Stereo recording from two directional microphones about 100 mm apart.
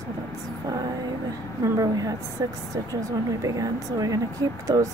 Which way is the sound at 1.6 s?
35° right (ahead or behind).